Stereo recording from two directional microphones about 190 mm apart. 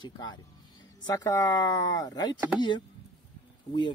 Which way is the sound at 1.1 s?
20° left (ahead or behind).